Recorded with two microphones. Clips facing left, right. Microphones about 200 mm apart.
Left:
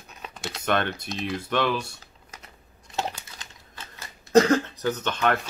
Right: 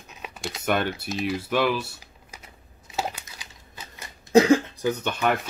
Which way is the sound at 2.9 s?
5° right (ahead or behind).